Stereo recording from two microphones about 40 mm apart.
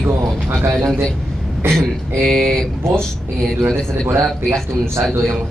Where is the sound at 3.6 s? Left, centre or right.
Right.